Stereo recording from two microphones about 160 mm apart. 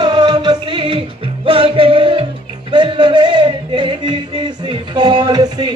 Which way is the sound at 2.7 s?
30° right (ahead or behind).